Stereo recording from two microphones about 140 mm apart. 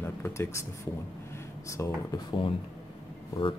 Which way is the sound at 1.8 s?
20° left (ahead or behind).